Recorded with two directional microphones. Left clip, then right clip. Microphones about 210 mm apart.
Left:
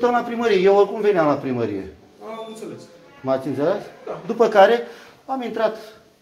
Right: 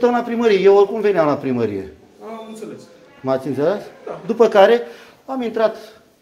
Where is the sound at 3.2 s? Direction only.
30° right (ahead or behind).